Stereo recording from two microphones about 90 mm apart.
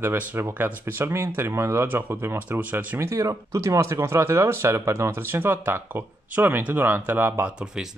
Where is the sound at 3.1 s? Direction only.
35° right (ahead or behind).